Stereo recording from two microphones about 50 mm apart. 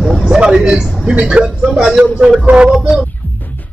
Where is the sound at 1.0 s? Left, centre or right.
Centre.